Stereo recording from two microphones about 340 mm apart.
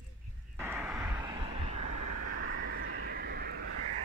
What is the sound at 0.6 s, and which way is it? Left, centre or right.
Vehicle, centre.